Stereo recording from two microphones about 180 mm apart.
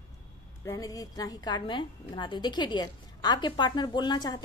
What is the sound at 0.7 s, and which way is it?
A woman's voice, 20° left (ahead or behind).